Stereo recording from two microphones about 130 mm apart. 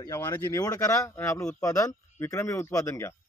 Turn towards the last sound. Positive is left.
turn(degrees=25)  # may be behind; listen again after turning